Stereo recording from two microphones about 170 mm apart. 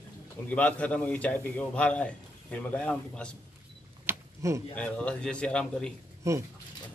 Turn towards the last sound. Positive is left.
turn(degrees=-20)  # may be behind; listen again after turning